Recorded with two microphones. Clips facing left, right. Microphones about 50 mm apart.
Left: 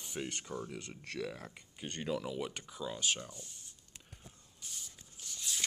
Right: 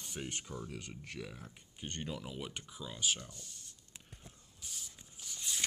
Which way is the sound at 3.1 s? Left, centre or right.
Left.